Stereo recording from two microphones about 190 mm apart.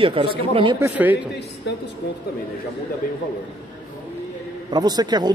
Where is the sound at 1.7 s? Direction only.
65° left (ahead or behind).